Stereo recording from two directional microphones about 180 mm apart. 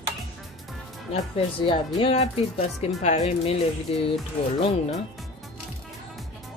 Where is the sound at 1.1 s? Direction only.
30° left (ahead or behind).